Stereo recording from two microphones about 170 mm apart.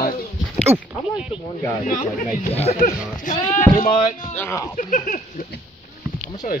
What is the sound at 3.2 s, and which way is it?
Speech, 50° left (ahead or behind).